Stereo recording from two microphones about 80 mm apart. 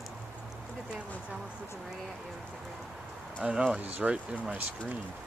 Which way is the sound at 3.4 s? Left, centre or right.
Centre.